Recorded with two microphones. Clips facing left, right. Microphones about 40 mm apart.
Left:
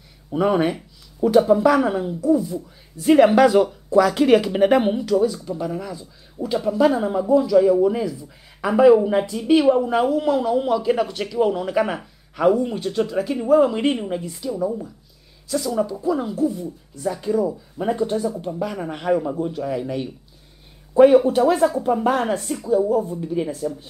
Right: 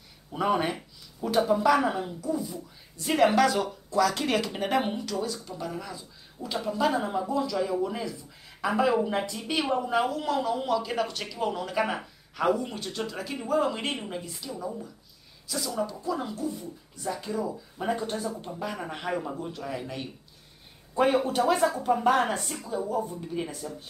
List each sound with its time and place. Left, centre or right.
0.3 s speech: centre
3.2 s speech: centre